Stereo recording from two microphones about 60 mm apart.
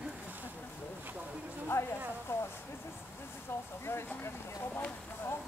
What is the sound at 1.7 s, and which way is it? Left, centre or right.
Speech, left.